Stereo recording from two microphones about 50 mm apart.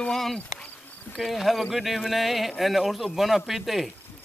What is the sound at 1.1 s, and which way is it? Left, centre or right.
A man's voice, centre.